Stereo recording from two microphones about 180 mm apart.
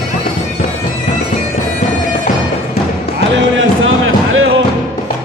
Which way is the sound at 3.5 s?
90° right.